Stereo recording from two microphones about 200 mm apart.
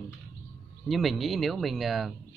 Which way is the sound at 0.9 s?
Centre (ahead or behind).